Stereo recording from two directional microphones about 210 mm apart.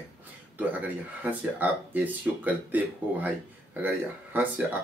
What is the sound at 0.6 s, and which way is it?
Speech, 10° right (ahead or behind).